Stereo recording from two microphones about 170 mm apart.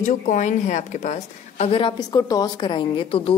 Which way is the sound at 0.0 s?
45° left (ahead or behind).